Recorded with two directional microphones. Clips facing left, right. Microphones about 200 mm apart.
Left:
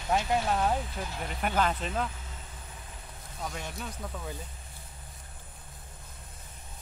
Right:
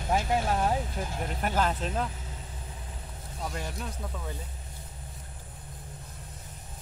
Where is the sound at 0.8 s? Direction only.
45° right (ahead or behind).